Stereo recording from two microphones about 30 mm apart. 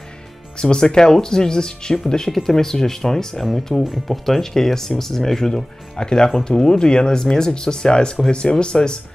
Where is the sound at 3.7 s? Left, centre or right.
Centre; by 8.9 s left.